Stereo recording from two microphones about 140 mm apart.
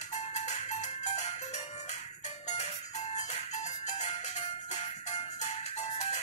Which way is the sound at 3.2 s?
55° left (ahead or behind).